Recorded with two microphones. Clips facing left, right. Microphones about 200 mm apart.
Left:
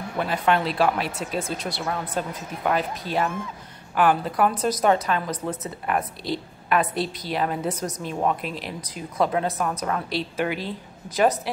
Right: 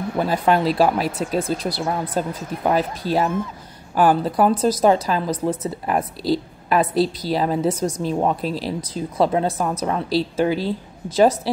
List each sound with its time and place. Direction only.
0.2 s speech: 35° right (ahead or behind)